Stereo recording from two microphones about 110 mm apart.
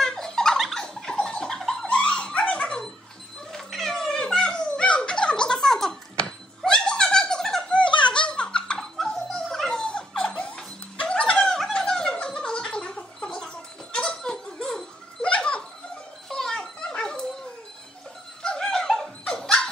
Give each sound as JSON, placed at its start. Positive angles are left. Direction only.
{"t": 0.0, "sound": "a sound", "side_deg": 5}
{"t": 3.5, "sound": "cat", "side_deg": 5}
{"t": 7.8, "sound": "music", "side_deg": 50}
{"t": 8.1, "sound": "dog", "side_deg": 10}
{"t": 13.9, "sound": "music", "side_deg": 10}
{"t": 16.3, "sound": "dog", "side_deg": 5}
{"t": 18.4, "sound": "dog", "side_deg": 5}